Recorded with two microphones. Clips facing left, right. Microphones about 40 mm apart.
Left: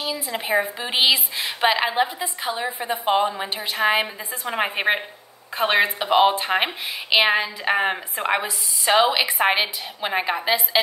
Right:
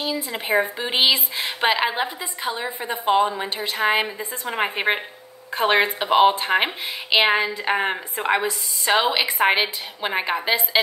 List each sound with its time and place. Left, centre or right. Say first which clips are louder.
0.0 s a woman's voice: right 1 dB; centre
3.4 s a woman's voice: right 1 dB; left
3.7 s speech: even; centre